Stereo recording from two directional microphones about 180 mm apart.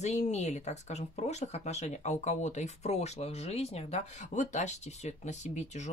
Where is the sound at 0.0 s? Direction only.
40° left (ahead or behind).